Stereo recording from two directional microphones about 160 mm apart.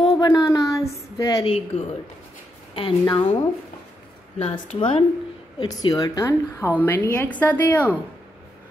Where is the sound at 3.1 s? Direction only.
30° left (ahead or behind); by 7.9 s 10° left (ahead or behind).